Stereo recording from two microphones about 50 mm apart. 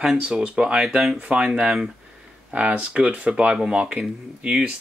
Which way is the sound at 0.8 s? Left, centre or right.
Centre.